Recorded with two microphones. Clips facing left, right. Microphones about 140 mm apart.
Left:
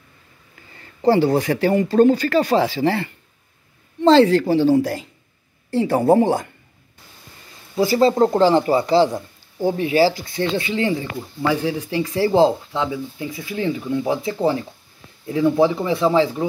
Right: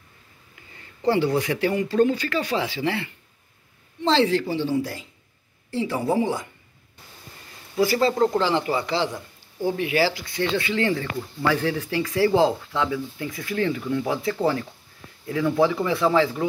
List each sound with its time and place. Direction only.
1.0 s speech: 35° left (ahead or behind)
5.8 s speech: 50° left (ahead or behind)
7.7 s speech: 30° left (ahead or behind)